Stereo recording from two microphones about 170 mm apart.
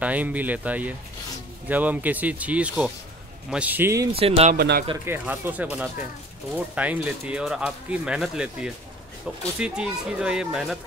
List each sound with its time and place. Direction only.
0.0 s speech: 10° right (ahead or behind)
4.1 s speech: 35° right (ahead or behind)
4.6 s speech: 65° right (ahead or behind)
5.0 s speech: 10° right (ahead or behind)